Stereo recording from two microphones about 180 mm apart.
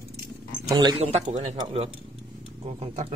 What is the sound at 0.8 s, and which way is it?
Speech, 30° right (ahead or behind).